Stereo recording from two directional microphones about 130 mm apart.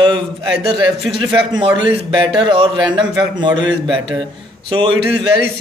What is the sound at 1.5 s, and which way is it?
A man's voice, 40° right (ahead or behind).